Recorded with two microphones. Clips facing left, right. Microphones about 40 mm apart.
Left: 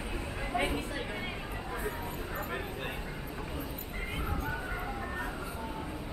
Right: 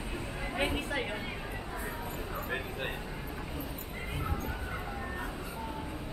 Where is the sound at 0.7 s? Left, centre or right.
Right.